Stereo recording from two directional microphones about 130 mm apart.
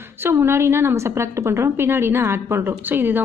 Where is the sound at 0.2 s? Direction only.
15° right (ahead or behind).